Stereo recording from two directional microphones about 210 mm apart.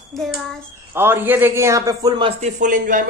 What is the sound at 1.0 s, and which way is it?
A man's voice, 10° right (ahead or behind).